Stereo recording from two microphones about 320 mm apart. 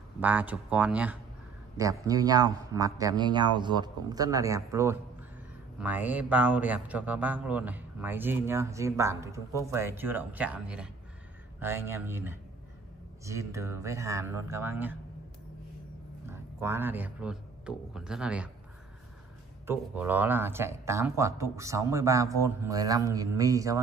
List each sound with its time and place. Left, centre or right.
0.2 s speech: centre
16.3 s a man's voice: centre
19.6 s speech: centre